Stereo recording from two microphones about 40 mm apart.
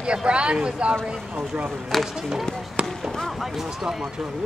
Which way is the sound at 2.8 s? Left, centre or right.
Right.